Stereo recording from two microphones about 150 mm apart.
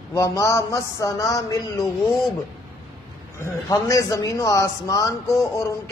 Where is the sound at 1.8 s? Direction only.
Centre (ahead or behind).